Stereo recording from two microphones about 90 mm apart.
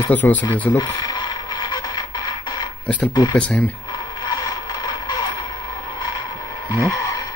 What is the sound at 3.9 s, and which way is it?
Mechanisms, 45° left (ahead or behind).